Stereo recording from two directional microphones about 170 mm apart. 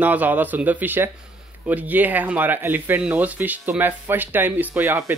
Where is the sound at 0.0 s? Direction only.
10° right (ahead or behind).